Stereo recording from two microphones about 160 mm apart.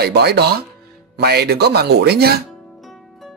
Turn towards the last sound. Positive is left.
turn(degrees=0)  # may be behind; listen again after turning